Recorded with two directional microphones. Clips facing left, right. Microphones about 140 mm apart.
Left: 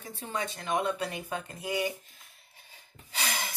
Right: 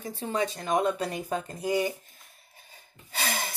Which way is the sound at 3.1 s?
50° right (ahead or behind).